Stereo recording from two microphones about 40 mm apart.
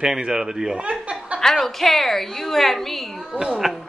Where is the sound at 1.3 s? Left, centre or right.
Centre.